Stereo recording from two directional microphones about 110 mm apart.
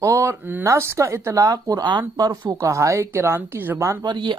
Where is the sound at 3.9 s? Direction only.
40° right (ahead or behind).